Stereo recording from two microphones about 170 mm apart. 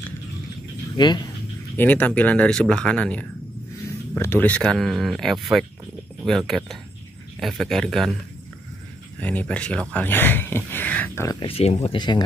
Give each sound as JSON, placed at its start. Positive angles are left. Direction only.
{"t": 0.9, "sound": "speech", "side_deg": 25}
{"t": 1.8, "sound": "speech", "side_deg": 10}
{"t": 9.2, "sound": "speech", "side_deg": 10}
{"t": 11.3, "sound": "speech", "side_deg": 35}